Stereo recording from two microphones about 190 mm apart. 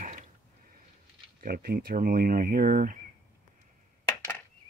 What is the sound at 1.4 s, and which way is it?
Speech, 50° right (ahead or behind).